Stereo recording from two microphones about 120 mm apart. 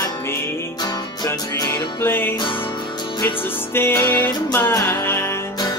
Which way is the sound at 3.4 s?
20° left (ahead or behind).